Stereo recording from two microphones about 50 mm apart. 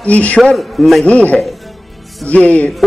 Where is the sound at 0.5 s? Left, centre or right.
Centre.